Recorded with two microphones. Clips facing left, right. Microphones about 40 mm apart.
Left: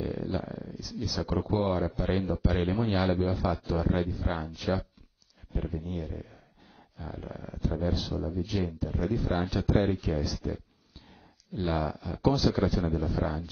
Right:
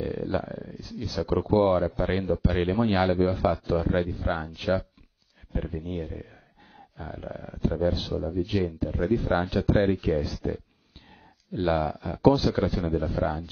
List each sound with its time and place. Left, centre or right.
0.3 s speech: right